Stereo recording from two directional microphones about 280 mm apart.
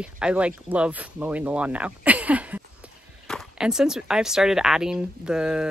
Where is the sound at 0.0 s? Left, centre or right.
Centre.